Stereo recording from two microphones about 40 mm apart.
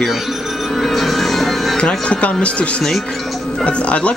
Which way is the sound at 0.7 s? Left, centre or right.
Centre.